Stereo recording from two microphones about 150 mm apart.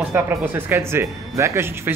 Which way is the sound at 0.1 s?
15° right (ahead or behind).